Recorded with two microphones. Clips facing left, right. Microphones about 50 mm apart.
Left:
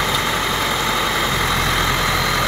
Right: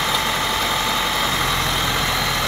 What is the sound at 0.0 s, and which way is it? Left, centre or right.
Vehicle, centre.